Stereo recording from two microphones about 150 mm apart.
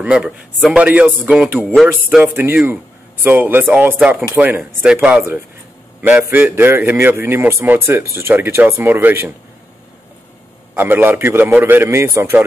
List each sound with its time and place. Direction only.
0.0 s a man's voice: 5° right (ahead or behind)
10.7 s a man's voice: 15° right (ahead or behind)